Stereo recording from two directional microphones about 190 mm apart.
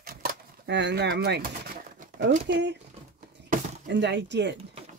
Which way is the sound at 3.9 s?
65° right (ahead or behind).